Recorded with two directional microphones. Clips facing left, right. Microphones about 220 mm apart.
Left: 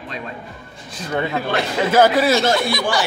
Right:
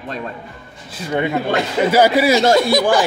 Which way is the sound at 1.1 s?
15° right (ahead or behind).